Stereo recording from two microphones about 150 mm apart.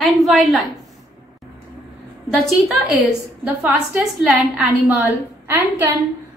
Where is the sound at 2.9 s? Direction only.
10° right (ahead or behind).